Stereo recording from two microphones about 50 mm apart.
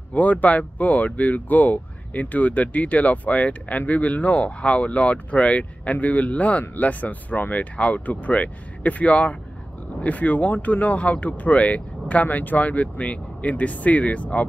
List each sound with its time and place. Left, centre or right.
0.1 s speech: left